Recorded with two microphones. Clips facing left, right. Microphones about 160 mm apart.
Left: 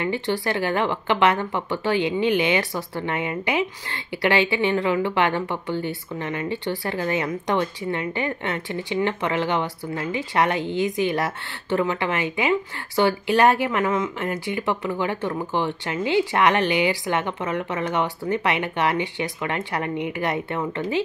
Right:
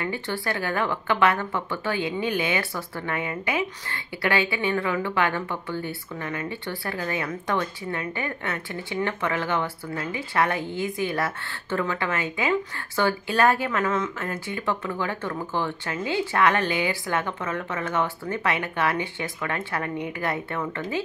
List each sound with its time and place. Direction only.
0.0 s speech: 20° left (ahead or behind)